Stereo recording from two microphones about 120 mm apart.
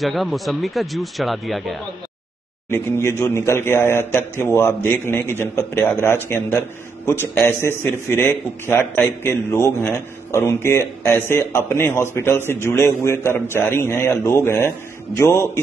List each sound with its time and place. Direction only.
0.0 s speech: centre (ahead or behind)
2.7 s a man's voice: 20° left (ahead or behind)